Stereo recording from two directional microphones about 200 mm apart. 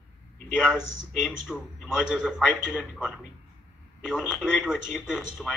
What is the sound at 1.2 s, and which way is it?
Speech, centre (ahead or behind).